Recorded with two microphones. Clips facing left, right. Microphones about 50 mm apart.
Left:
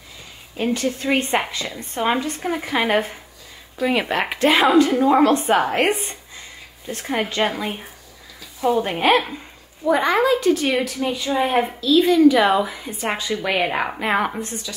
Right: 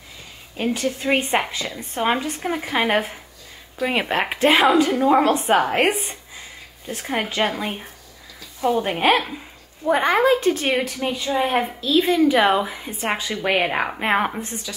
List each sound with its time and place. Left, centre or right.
0.6 s a woman's voice: centre
4.1 s a woman's voice: centre
9.8 s a woman's voice: right
11.3 s a woman's voice: centre
11.8 s a woman's voice: right; by 13.9 s centre